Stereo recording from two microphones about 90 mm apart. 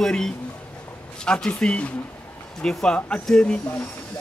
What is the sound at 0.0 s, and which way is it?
A man's voice, 5° left (ahead or behind).